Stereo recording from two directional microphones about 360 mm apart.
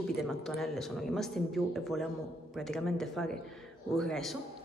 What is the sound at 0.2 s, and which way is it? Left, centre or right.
Speech, centre.